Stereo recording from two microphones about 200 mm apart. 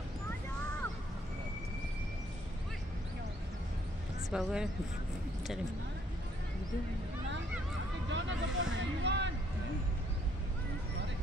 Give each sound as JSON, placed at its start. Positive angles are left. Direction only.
{"t": 4.3, "sound": "speech", "side_deg": -5}
{"t": 8.1, "sound": "speech", "side_deg": -65}